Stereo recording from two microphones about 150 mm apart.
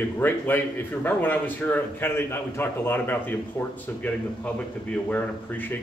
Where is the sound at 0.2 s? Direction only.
15° left (ahead or behind).